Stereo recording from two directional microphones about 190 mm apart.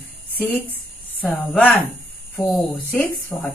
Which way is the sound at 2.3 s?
15° left (ahead or behind).